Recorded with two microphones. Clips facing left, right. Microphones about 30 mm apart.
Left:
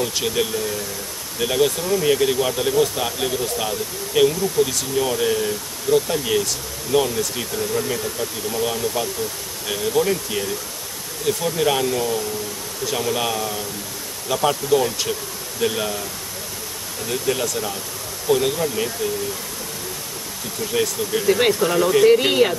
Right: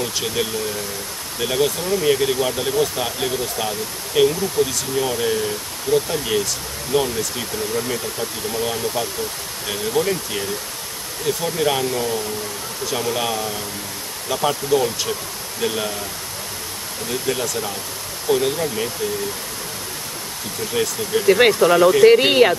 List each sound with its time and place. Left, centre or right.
0.0 s speech: centre
17.1 s speech: centre
20.7 s speech: centre
21.3 s speech: centre
22.0 s speech: right